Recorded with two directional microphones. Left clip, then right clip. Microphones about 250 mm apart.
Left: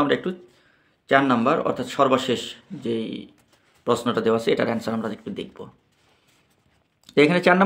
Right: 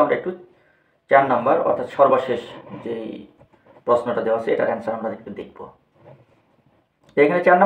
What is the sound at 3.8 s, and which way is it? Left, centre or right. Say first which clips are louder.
Speech: right 3 dB; left.